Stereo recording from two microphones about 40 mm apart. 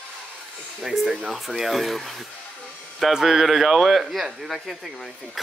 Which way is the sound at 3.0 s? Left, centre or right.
Centre.